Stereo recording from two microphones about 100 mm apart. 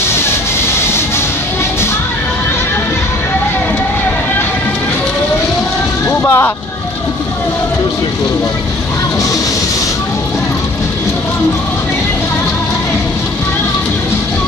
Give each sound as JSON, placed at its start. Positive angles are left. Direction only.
{"t": 6.0, "sound": "vehicle", "side_deg": 25}